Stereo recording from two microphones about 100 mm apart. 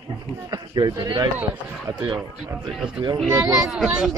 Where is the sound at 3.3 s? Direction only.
35° right (ahead or behind).